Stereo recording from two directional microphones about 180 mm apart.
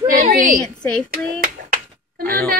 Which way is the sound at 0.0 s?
50° right (ahead or behind).